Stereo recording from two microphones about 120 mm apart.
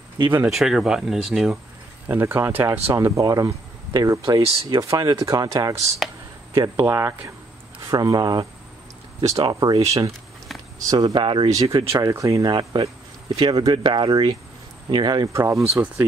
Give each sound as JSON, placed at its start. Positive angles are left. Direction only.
{"t": 0.2, "sound": "speech", "side_deg": -15}
{"t": 0.5, "sound": "speech", "side_deg": 0}
{"t": 2.0, "sound": "speech", "side_deg": -20}
{"t": 2.9, "sound": "speech", "side_deg": -25}
{"t": 10.8, "sound": "speech", "side_deg": -30}
{"t": 11.1, "sound": "speech", "side_deg": -45}
{"t": 12.0, "sound": "speech", "side_deg": -25}
{"t": 15.2, "sound": "speech", "side_deg": -25}
{"t": 15.7, "sound": "speech", "side_deg": -10}